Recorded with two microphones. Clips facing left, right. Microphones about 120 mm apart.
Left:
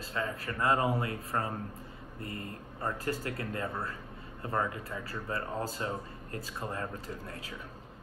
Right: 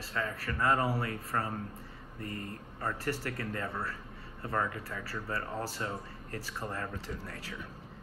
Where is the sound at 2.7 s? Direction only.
15° left (ahead or behind).